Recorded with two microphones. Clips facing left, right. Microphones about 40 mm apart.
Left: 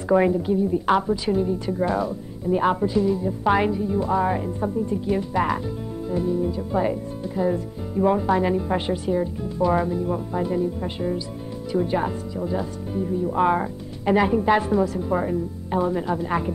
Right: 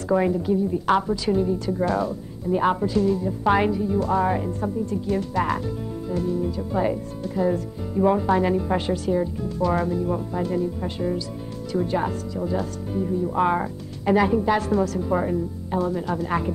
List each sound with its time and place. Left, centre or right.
0.3 s speech: centre
4.5 s speech: centre
8.7 s speech: centre
11.7 s speech: centre
14.0 s speech: centre
14.7 s speech: centre
15.7 s speech: centre
16.3 s speech: centre